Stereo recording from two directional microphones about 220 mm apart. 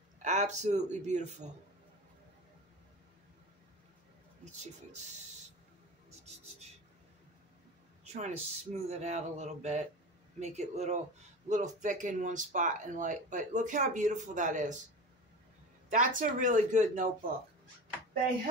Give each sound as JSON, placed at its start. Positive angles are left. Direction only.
{"t": 0.2, "sound": "speech", "side_deg": -35}
{"t": 4.5, "sound": "speech", "side_deg": -30}
{"t": 6.0, "sound": "a sound", "side_deg": -30}
{"t": 8.0, "sound": "speech", "side_deg": -30}
{"t": 15.9, "sound": "speech", "side_deg": -35}